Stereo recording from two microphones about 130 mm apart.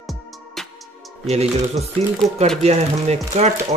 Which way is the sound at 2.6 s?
55° right (ahead or behind).